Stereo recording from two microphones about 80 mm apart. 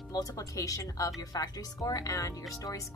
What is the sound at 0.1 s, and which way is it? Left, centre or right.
Speech, left.